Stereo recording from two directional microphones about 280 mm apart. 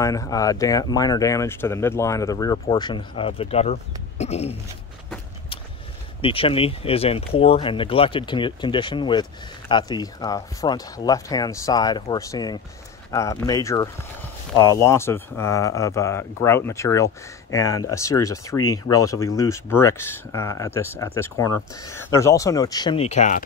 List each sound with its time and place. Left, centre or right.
0.0 s speech: centre
6.2 s speech: centre